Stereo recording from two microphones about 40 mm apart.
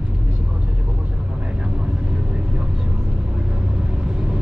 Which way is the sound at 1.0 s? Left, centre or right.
Right.